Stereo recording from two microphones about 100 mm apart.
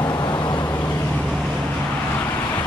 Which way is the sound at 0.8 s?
10° left (ahead or behind).